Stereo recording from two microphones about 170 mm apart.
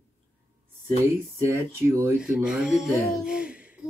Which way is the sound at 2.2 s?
5° right (ahead or behind).